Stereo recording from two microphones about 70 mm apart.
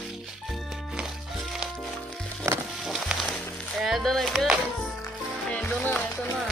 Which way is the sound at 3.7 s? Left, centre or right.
Centre.